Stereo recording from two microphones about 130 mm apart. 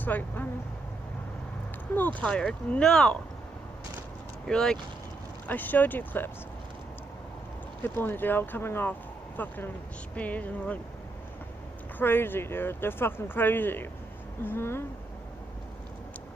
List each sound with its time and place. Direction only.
0.0 s speech: 15° left (ahead or behind)
2.1 s speech: 5° left (ahead or behind)
4.5 s speech: 5° left (ahead or behind)
7.8 s speech: 15° left (ahead or behind)
12.0 s speech: 15° left (ahead or behind)